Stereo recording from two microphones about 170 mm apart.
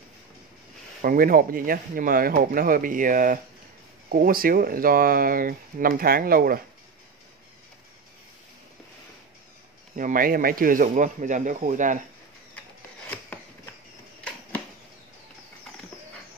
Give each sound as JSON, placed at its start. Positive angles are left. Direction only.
{"t": 1.0, "sound": "speech", "side_deg": -55}
{"t": 9.9, "sound": "speech", "side_deg": -55}